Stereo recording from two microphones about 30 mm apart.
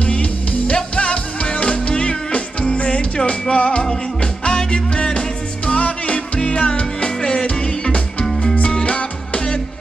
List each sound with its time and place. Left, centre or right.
0.0 s music: left
4.2 s music: left
5.7 s music: left